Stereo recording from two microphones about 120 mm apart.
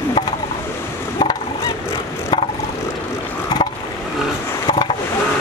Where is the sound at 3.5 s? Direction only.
35° left (ahead or behind).